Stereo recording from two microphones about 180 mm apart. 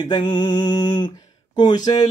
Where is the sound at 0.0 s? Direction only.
25° left (ahead or behind).